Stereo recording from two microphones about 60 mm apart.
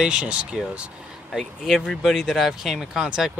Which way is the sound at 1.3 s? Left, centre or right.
Centre.